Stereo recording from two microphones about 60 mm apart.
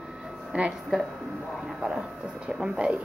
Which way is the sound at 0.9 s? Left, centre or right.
Centre.